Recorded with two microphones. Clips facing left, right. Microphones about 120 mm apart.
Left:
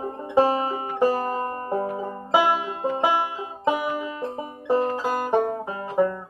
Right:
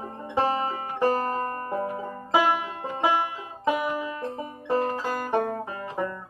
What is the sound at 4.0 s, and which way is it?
Music, 15° left (ahead or behind).